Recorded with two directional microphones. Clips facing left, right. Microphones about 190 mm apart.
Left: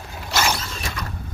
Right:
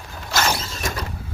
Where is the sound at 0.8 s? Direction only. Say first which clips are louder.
Right 3 dB; 45° right (ahead or behind).